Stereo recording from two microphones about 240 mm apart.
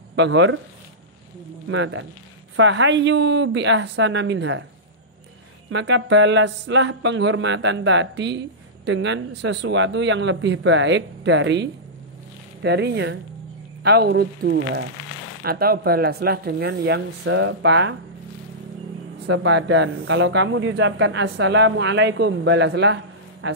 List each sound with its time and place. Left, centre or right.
0.1 s speech: right
1.7 s speech: right
5.7 s speech: right
19.2 s speech: right